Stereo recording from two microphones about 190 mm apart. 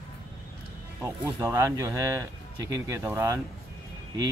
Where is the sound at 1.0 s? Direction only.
15° right (ahead or behind).